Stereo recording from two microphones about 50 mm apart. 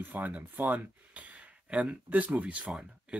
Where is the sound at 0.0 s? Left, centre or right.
Right.